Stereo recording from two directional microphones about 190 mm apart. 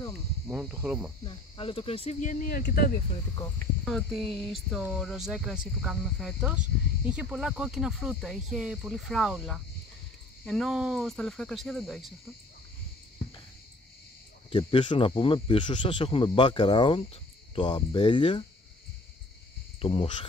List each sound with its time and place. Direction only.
0.5 s speech: 5° right (ahead or behind)
1.2 s speech: 30° left (ahead or behind); by 2.9 s 55° left (ahead or behind)
3.8 s speech: centre (ahead or behind)
14.5 s speech: 25° left (ahead or behind)
19.8 s speech: 30° left (ahead or behind)